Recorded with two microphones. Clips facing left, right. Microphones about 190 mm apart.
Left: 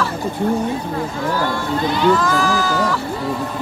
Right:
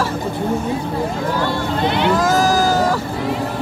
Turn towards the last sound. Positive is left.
turn(degrees=-40)  # may be behind; listen again after turning